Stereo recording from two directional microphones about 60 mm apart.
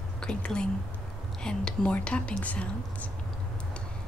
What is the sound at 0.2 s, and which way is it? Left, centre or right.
Speech, centre.